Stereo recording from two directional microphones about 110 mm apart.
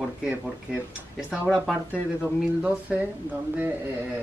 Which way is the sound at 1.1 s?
10° right (ahead or behind).